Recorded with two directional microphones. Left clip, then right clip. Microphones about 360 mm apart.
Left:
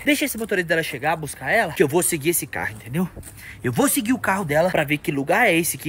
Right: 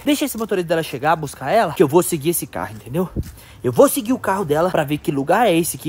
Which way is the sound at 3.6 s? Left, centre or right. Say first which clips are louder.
Right 8 dB; right.